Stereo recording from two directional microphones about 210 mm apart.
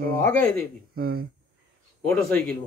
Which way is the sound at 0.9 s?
45° right (ahead or behind).